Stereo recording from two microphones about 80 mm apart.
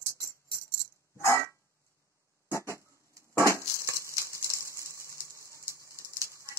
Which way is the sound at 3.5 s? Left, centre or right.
Right.